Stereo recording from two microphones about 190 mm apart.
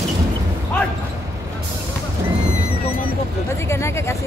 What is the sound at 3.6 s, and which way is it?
Speech, 15° left (ahead or behind).